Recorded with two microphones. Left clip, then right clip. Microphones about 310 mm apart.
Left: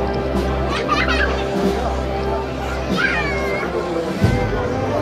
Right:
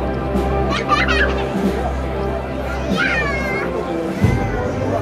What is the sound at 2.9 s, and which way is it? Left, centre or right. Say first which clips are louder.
Music: right 1 dB; right.